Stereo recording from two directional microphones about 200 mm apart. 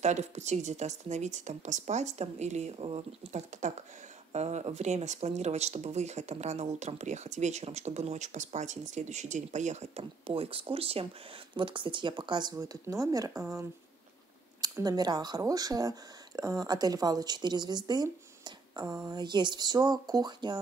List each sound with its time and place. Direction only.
0.0 s speech: 35° right (ahead or behind)